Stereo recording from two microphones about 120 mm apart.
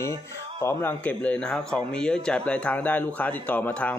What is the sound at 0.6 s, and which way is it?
Speech, 20° left (ahead or behind).